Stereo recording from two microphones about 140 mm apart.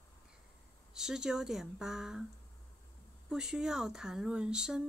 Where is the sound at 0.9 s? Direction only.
5° right (ahead or behind).